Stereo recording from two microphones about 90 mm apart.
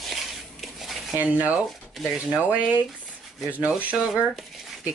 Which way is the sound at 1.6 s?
Centre (ahead or behind).